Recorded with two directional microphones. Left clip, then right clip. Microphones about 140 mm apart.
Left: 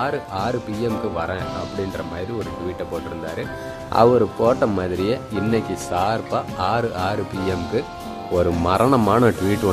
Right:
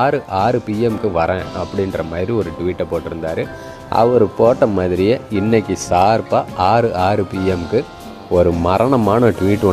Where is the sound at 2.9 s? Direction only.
35° right (ahead or behind).